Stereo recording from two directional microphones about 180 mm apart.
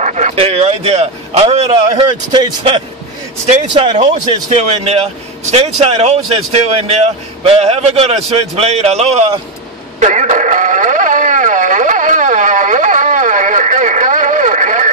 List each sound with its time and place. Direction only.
0.0 s speech: 40° right (ahead or behind); by 2.8 s 25° right (ahead or behind)
3.4 s speech: 40° right (ahead or behind)
9.9 s radio: 45° right (ahead or behind)